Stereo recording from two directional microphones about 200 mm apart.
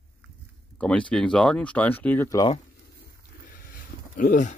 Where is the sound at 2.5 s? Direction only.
40° left (ahead or behind).